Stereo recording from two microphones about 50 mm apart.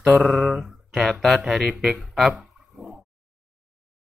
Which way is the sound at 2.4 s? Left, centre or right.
Centre.